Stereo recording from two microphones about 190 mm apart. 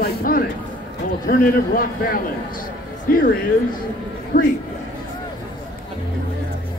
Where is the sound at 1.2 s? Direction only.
50° left (ahead or behind).